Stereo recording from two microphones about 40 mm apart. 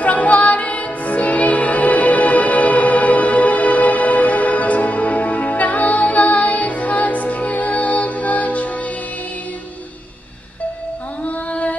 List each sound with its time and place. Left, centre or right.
0.0 s music: left
11.2 s mantra: left